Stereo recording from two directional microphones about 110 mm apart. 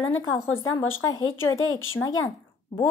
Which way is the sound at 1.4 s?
20° left (ahead or behind).